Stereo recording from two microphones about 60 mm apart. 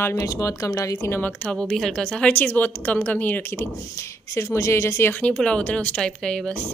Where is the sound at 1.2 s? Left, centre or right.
Centre.